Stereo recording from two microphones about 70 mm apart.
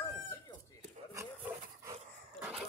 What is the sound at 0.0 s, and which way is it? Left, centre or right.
Chicken, left.